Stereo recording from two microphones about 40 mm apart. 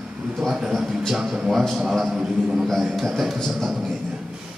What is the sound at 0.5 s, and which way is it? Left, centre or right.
A man's voice, centre.